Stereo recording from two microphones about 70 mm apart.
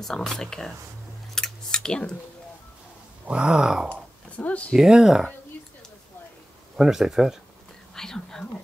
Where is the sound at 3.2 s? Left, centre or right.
Centre.